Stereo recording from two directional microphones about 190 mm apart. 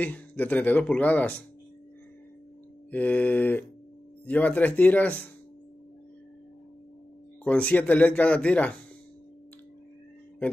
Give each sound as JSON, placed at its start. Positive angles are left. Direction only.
{"t": 0.0, "sound": "speech", "side_deg": 10}
{"t": 2.9, "sound": "speech", "side_deg": 5}
{"t": 7.4, "sound": "speech", "side_deg": 5}